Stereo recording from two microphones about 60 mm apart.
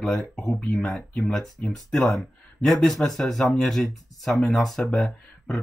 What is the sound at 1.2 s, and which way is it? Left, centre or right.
Speech, centre.